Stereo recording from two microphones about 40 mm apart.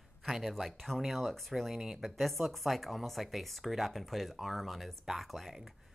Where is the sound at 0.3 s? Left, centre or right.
Centre.